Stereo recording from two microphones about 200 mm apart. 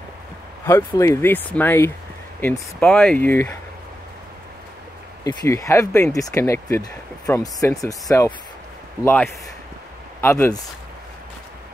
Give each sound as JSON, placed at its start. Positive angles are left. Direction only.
{"t": 0.7, "sound": "speech", "side_deg": 15}
{"t": 5.2, "sound": "speech", "side_deg": 15}